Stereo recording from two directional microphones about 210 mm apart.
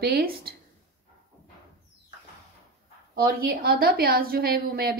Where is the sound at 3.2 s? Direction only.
45° right (ahead or behind).